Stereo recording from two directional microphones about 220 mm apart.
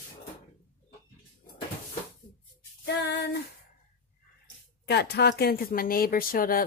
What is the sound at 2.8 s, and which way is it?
Female singing, 50° left (ahead or behind).